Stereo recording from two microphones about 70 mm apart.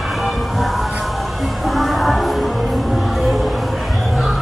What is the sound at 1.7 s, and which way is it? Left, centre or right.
Music, centre.